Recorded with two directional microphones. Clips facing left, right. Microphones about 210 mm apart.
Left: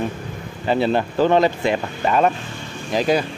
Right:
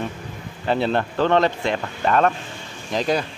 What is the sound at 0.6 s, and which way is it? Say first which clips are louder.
Speech: left 2 dB; 5° left (ahead or behind).